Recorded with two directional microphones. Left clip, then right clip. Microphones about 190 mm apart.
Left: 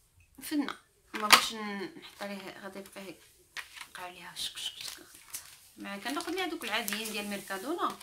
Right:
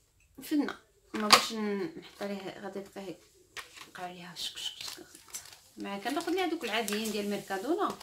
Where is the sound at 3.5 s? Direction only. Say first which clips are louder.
Left 1 dB; 20° left (ahead or behind).